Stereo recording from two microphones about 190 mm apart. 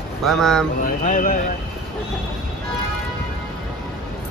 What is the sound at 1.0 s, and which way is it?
Speech, 45° left (ahead or behind).